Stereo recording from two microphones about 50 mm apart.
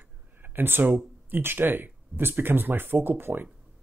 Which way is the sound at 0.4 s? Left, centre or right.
Right.